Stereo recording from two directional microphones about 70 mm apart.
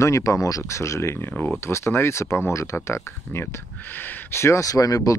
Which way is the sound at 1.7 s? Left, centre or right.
Left.